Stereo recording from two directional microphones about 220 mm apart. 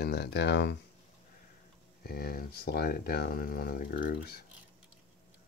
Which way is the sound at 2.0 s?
40° left (ahead or behind).